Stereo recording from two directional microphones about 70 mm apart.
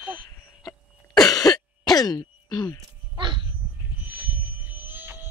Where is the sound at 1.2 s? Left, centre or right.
Left.